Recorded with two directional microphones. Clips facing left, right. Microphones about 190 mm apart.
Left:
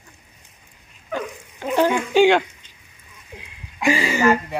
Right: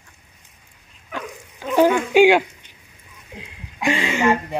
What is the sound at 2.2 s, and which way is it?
Speech, 10° right (ahead or behind).